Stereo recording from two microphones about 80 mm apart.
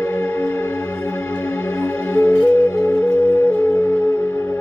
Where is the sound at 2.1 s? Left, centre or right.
Left.